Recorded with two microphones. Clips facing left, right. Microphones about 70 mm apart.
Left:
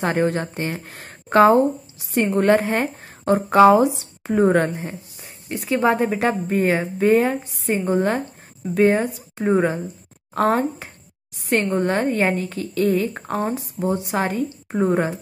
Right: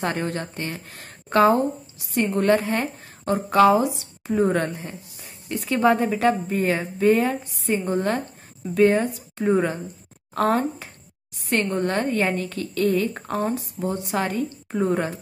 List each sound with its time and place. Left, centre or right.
0.0 s a woman's voice: left
4.3 s a woman's voice: left
5.2 s a sound: centre
5.9 s a woman's voice: left
11.7 s a woman's voice: left